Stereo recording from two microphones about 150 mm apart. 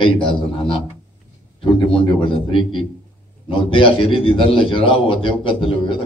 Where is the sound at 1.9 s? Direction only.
35° left (ahead or behind).